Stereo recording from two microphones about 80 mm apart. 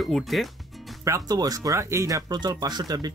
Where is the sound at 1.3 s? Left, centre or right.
Right.